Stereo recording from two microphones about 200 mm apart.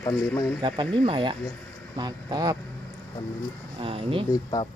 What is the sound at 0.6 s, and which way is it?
Speech, 25° right (ahead or behind).